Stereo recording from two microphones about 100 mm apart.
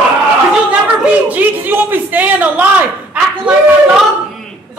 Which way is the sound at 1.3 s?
20° right (ahead or behind).